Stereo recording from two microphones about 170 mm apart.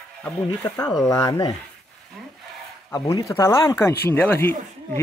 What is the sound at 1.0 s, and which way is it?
Speech, 20° left (ahead or behind).